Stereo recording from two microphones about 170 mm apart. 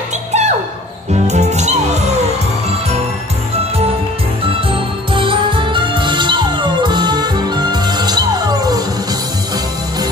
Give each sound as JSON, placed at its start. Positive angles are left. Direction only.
{"t": 0.3, "sound": "a sound", "side_deg": -40}
{"t": 1.1, "sound": "music", "side_deg": -40}
{"t": 5.1, "sound": "music", "side_deg": -30}